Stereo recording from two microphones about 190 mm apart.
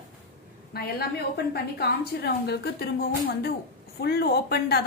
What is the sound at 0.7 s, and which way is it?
A woman's voice, 55° left (ahead or behind).